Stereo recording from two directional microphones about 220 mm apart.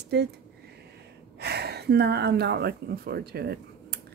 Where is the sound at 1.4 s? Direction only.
45° right (ahead or behind).